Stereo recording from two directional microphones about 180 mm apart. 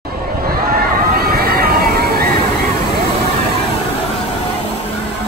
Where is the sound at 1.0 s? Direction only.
60° right (ahead or behind).